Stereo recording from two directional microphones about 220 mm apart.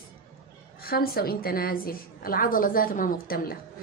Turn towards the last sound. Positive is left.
turn(degrees=40)  # may be behind; listen again after turning